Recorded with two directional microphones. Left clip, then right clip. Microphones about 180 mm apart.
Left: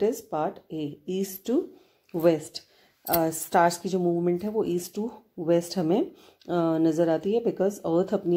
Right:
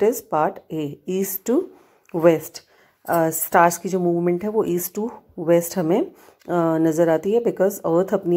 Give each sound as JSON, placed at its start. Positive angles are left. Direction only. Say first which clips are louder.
{"t": 0.0, "sound": "speech", "louder": "right 7 dB", "side_deg": -20}